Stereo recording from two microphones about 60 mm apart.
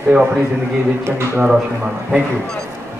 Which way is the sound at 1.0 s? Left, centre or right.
Right.